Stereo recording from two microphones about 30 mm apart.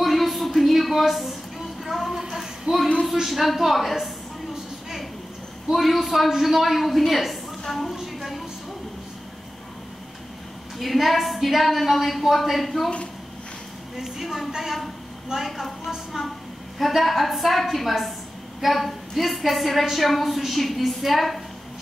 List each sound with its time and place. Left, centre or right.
0.0 s a sound: centre
2.7 s speech: right
3.3 s a woman's voice: centre
5.7 s a woman's voice: centre
7.9 s a woman's voice: centre
10.8 s a woman's voice: centre
13.9 s a woman's voice: centre
14.2 s a woman's voice: centre
14.5 s a woman's voice: centre
16.7 s a woman's voice: centre